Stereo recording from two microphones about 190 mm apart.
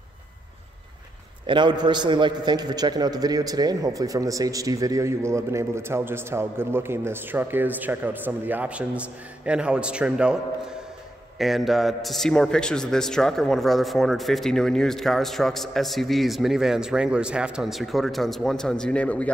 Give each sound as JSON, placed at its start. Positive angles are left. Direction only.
{"t": 1.5, "sound": "a man's voice", "side_deg": -25}